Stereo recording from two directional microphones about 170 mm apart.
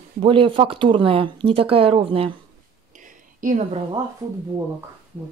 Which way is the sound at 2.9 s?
50° right (ahead or behind).